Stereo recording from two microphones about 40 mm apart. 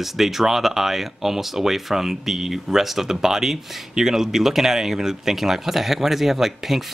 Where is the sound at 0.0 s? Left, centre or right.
Centre.